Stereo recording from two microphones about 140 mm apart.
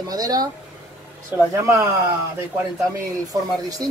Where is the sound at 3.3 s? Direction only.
25° right (ahead or behind).